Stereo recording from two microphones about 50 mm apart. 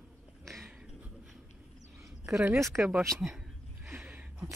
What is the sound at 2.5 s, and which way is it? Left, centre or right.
Speech, right.